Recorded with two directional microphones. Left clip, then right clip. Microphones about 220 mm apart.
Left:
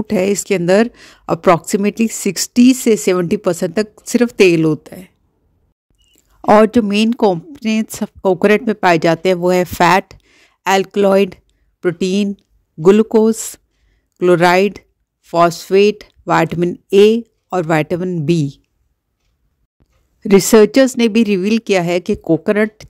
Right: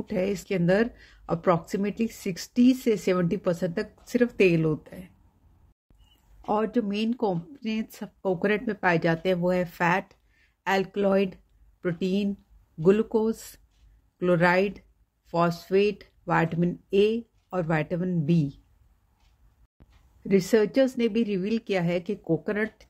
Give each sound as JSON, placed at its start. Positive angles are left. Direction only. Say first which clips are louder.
{"t": 0.1, "sound": "speech", "louder": "left 12 dB", "side_deg": 50}
{"t": 6.4, "sound": "speech", "louder": "left 16 dB", "side_deg": 45}
{"t": 20.2, "sound": "speech", "louder": "left 14 dB", "side_deg": 50}